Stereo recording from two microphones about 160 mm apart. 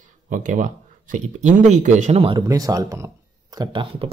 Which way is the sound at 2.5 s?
20° right (ahead or behind).